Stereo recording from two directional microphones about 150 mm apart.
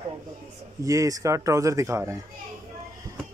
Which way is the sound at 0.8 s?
20° right (ahead or behind).